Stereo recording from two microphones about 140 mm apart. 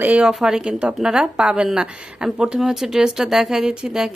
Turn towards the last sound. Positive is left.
turn(degrees=-5)  # may be behind; listen again after turning